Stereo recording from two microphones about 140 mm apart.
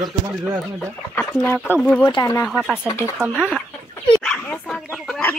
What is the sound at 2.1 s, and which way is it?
Speech, 25° left (ahead or behind).